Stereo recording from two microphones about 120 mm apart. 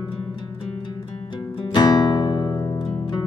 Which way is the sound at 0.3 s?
35° left (ahead or behind).